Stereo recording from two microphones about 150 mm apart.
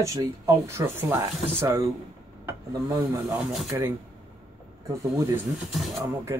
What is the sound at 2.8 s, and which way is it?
Speech, 20° right (ahead or behind).